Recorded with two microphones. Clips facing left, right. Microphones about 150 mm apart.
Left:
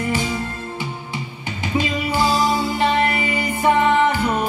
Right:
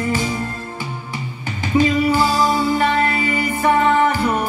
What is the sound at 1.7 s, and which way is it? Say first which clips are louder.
Music: right 6 dB; 20° left (ahead or behind).